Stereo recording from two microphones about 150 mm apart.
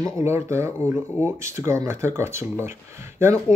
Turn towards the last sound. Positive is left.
turn(degrees=-15)  # may be behind; listen again after turning